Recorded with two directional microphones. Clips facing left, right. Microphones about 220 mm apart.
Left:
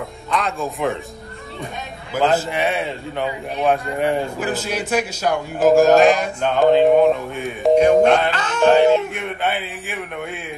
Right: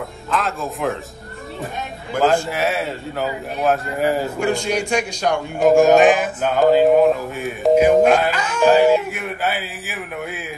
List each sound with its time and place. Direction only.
0.3 s a man's voice: centre (ahead or behind)
2.1 s a man's voice: centre (ahead or behind)